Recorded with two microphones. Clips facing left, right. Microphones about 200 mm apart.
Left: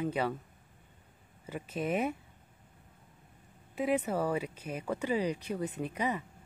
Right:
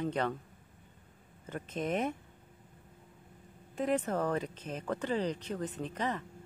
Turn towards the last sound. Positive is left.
turn(degrees=10)  # may be behind; listen again after turning